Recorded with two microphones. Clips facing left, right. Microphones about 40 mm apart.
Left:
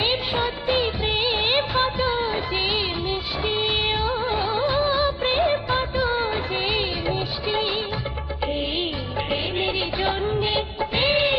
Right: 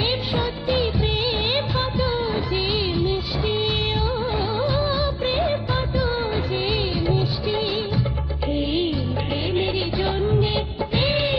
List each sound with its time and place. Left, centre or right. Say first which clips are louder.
0.0 s music of bollywood: left 1 dB; centre
2.3 s music: right 1 dB; left
3.6 s music of bollywood: left 1 dB; left
4.1 s music of bollywood: even; centre
4.4 s music: left 1 dB; centre
4.6 s music of bollywood: left 3 dB; left
4.9 s music: left 1 dB; left
5.9 s music of bollywood: left 1 dB; centre
6.5 s music of bollywood: right 1 dB; left
9.5 s music of bollywood: right 2 dB; centre